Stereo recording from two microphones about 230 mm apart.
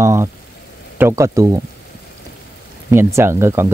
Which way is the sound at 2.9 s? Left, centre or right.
Centre.